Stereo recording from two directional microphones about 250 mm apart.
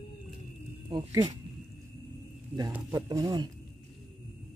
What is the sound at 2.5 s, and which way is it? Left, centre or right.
Speech, centre.